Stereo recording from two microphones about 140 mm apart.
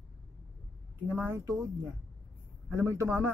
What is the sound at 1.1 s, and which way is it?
Speech, 15° right (ahead or behind).